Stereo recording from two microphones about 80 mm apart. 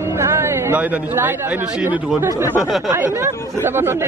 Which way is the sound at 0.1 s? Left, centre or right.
Right.